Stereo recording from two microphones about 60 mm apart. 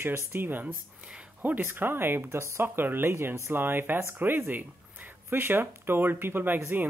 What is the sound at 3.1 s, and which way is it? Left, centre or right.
Speech, right.